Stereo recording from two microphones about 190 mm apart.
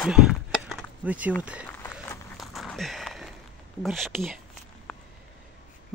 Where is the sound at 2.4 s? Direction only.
Centre (ahead or behind).